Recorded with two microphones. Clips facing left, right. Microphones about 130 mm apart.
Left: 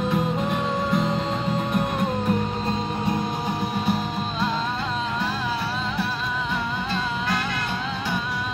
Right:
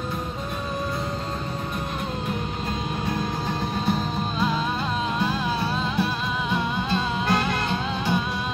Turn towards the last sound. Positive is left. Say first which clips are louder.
# right 2 dB
turn(degrees=-20)  # may be behind; listen again after turning